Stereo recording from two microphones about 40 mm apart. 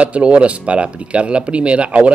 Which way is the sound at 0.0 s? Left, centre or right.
Right.